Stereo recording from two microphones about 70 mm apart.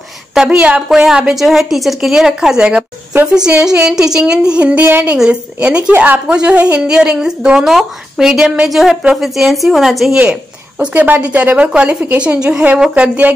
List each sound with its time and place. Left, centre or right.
0.3 s a woman's voice: centre
5.9 s a woman's voice: right
6.2 s speech: centre
10.1 s speech: centre